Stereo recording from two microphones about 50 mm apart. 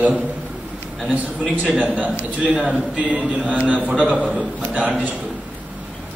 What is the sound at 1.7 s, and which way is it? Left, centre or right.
A man's voice, right.